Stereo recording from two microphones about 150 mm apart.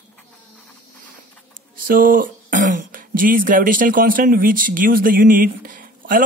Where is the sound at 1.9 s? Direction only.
70° right (ahead or behind).